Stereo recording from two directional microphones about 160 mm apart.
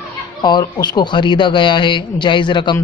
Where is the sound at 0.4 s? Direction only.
25° left (ahead or behind).